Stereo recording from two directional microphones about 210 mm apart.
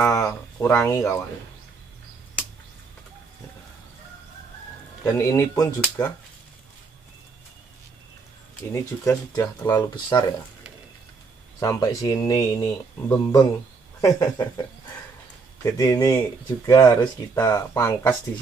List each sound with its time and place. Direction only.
0.1 s speech: 15° left (ahead or behind)
5.0 s speech: 15° left (ahead or behind)
8.7 s speech: 15° left (ahead or behind)
11.6 s speech: 15° left (ahead or behind)